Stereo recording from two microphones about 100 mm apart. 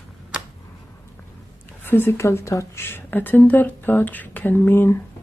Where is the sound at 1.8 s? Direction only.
20° left (ahead or behind).